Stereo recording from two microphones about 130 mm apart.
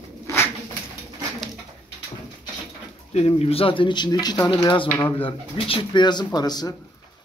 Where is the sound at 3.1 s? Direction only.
50° left (ahead or behind); by 6.7 s 30° left (ahead or behind).